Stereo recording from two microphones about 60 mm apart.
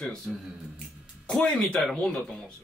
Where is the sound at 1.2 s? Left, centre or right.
Centre.